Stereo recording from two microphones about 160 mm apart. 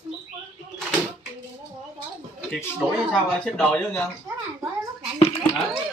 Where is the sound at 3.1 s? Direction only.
5° left (ahead or behind).